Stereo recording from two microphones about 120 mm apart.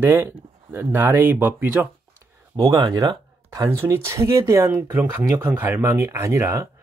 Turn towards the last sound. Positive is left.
turn(degrees=-25)  # may be behind; listen again after turning